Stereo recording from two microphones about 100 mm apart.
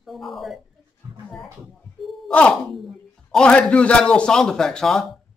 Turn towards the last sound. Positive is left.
turn(degrees=5)  # may be behind; listen again after turning